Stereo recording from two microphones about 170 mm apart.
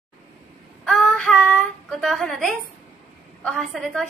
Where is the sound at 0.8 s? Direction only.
5° left (ahead or behind).